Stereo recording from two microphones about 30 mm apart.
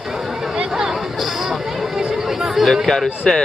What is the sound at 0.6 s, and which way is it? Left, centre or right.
Chatter, centre.